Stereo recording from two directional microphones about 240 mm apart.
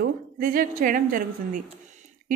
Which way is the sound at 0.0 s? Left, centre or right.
Right.